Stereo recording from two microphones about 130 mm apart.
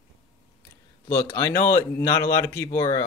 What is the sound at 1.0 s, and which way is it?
Speech, 25° left (ahead or behind).